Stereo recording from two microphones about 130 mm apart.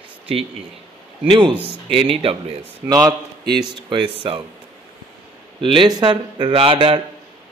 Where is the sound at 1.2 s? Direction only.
40° right (ahead or behind).